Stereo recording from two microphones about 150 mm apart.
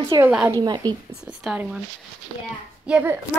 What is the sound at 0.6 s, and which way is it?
Speech, 25° right (ahead or behind).